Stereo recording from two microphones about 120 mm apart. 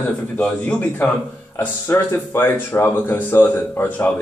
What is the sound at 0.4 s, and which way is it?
Speech, 10° left (ahead or behind).